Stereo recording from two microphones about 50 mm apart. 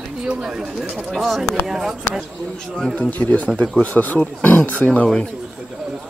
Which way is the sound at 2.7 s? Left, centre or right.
Centre.